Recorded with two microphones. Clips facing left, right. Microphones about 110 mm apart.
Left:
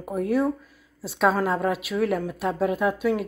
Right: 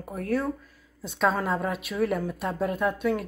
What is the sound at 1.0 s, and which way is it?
Speech, 5° left (ahead or behind).